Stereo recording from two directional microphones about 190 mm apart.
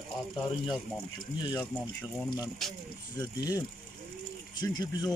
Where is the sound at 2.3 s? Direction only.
Centre (ahead or behind).